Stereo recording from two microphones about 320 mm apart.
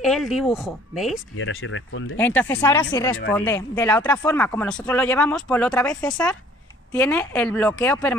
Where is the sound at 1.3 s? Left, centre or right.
Left.